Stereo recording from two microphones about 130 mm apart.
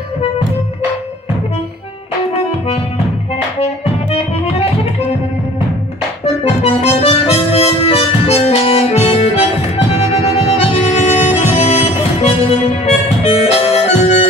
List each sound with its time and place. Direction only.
3.8 s music: 50° left (ahead or behind)
6.2 s music: 55° left (ahead or behind)